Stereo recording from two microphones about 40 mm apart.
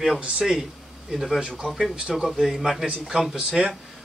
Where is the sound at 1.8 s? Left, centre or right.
Centre.